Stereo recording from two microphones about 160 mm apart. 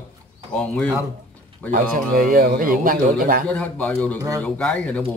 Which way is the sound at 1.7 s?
60° right (ahead or behind).